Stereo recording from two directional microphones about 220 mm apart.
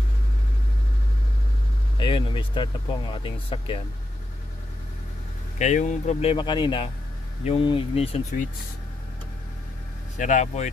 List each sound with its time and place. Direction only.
2.0 s speech: 20° left (ahead or behind)
5.6 s speech: 35° left (ahead or behind)
10.1 s speech: 35° left (ahead or behind)